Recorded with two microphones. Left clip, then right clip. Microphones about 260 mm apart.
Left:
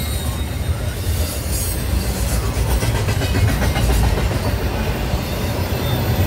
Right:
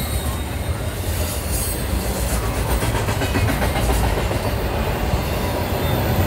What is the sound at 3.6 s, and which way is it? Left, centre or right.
Vehicle, right.